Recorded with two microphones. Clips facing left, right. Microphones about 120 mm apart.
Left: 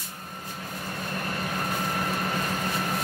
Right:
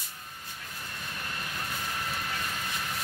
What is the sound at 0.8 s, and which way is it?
Vehicle, 55° left (ahead or behind).